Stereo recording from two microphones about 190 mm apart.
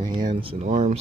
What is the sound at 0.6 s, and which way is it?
Speech, 40° right (ahead or behind).